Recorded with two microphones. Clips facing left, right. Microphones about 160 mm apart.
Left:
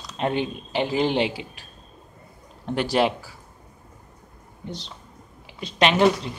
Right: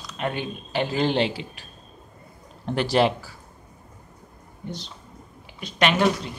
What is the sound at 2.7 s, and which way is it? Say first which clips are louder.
Speech: right 1 dB; 5° left (ahead or behind).